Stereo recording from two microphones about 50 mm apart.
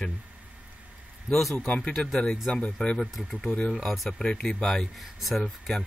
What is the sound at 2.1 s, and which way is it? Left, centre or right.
Speech, centre.